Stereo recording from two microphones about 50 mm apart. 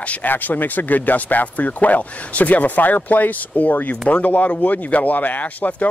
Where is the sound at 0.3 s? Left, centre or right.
Left.